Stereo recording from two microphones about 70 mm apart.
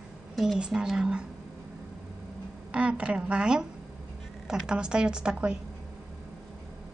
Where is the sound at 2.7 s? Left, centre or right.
Centre.